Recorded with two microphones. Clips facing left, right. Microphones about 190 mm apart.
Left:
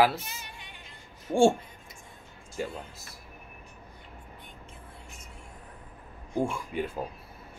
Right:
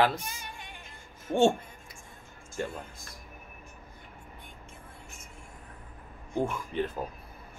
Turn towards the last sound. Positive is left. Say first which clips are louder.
# even
turn(degrees=10)  # may be behind; listen again after turning